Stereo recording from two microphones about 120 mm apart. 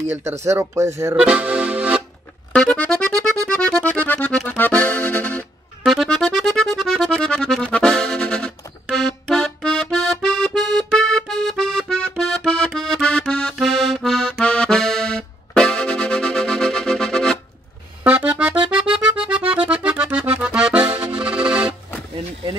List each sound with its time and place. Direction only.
0.1 s speech: 25° right (ahead or behind)
1.1 s accordion: 10° right (ahead or behind)
2.5 s music: 5° left (ahead or behind)
5.9 s music: 5° left (ahead or behind)
8.9 s accordion: 5° left (ahead or behind)
18.0 s music: 10° right (ahead or behind)
19.7 s accordion: 10° right (ahead or behind)